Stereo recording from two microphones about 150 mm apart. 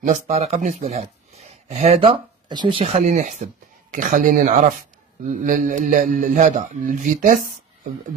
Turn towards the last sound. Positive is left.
turn(degrees=-60)  # may be behind; listen again after turning